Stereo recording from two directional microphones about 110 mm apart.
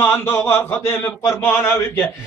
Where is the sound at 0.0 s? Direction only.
20° left (ahead or behind).